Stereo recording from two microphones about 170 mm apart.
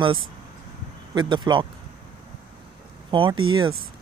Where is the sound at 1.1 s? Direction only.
25° right (ahead or behind).